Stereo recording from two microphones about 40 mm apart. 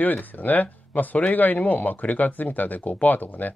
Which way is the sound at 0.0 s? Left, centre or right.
Left.